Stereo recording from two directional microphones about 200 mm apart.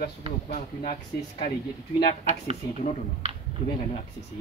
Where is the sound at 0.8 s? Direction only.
35° left (ahead or behind).